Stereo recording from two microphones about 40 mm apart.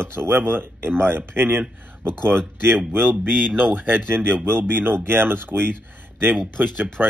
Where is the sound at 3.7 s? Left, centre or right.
Right.